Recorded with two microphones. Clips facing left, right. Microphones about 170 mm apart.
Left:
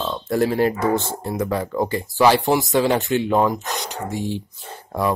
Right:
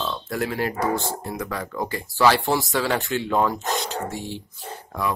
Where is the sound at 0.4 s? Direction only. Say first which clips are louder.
Left 6 dB; 30° left (ahead or behind).